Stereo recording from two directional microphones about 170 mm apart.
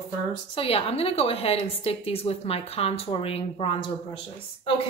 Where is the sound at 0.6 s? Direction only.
35° left (ahead or behind).